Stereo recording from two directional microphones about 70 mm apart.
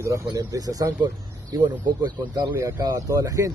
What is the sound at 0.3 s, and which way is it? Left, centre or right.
Speech, right.